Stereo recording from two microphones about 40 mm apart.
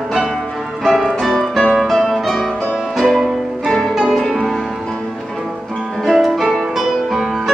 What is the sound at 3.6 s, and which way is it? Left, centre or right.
Music, centre.